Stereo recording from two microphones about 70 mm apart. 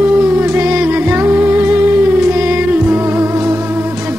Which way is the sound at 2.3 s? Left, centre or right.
Right.